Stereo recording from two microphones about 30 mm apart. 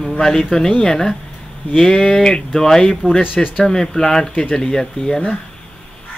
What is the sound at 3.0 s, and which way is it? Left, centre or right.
Speech, left.